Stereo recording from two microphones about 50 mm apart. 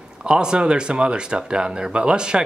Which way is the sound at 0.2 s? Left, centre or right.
Centre.